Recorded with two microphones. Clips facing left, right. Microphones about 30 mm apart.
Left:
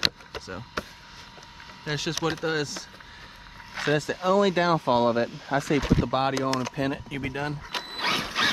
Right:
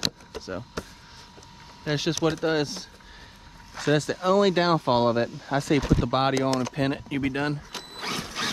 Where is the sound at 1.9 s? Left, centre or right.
Centre.